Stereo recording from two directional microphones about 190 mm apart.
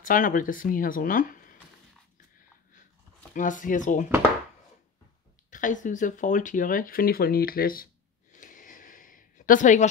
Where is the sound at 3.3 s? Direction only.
45° left (ahead or behind).